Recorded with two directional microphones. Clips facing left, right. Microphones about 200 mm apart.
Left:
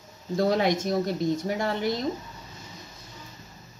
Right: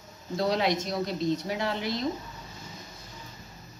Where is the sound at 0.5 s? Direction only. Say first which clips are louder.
Left 2 dB; 50° left (ahead or behind).